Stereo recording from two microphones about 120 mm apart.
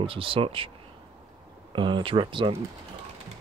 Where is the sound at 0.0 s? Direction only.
50° right (ahead or behind).